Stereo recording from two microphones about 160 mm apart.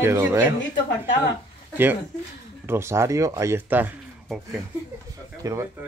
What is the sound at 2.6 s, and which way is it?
Speech, 15° right (ahead or behind).